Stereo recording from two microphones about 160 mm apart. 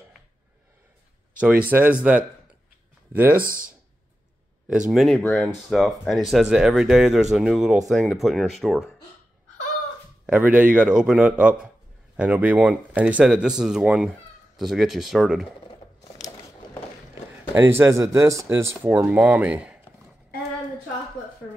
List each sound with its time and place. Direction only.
1.7 s speech: 10° right (ahead or behind)
3.3 s speech: 60° right (ahead or behind)
4.6 s speech: 5° right (ahead or behind)
10.2 s speech: 10° right (ahead or behind)
17.6 s speech: 15° right (ahead or behind)